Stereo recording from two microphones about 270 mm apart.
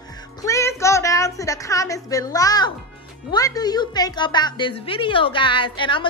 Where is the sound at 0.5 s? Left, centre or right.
Centre.